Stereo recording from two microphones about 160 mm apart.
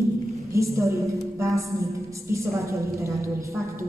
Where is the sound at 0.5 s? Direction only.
20° right (ahead or behind).